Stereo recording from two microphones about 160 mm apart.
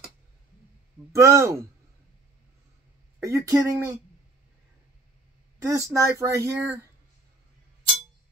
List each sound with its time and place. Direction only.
1.1 s speech: 20° right (ahead or behind)
3.2 s speech: 20° right (ahead or behind)
5.6 s speech: 20° right (ahead or behind)